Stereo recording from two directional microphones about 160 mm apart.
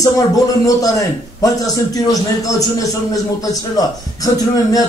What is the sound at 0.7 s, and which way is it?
A man's voice, 20° left (ahead or behind).